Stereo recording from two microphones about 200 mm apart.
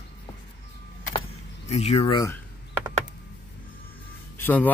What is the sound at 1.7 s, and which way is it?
Speech, 35° left (ahead or behind).